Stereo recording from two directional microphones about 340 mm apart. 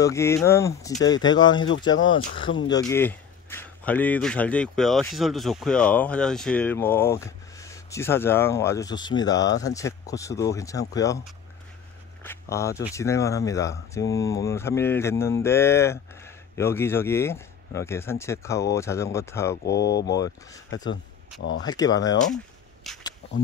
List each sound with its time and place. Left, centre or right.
0.0 s speech: centre
12.2 s speech: centre
19.6 s speech: left
20.1 s speech: centre
21.4 s speech: left
21.6 s speech: centre
22.8 s a sound: centre